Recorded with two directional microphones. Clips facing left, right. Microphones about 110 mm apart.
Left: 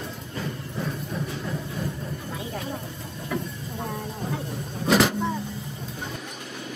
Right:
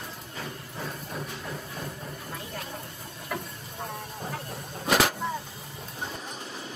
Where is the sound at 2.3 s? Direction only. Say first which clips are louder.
Left 5 dB; centre (ahead or behind).